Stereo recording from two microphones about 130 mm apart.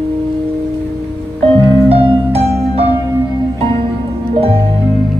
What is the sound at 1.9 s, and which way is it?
Music, 50° right (ahead or behind).